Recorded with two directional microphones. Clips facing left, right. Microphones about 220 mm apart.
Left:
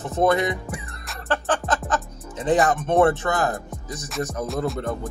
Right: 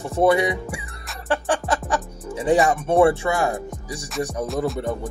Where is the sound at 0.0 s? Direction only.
10° right (ahead or behind).